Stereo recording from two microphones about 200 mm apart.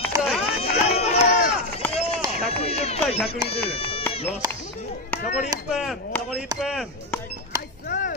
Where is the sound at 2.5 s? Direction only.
30° left (ahead or behind).